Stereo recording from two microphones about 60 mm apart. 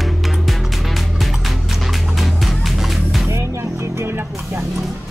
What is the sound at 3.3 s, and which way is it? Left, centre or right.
Music, right.